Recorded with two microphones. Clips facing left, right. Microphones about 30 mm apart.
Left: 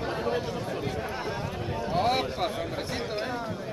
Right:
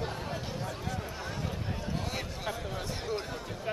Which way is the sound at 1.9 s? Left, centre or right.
Left.